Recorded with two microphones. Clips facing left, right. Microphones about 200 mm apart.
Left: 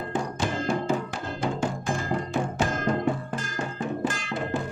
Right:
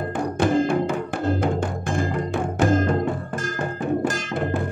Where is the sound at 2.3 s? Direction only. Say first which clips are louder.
Right 9 dB; 50° right (ahead or behind).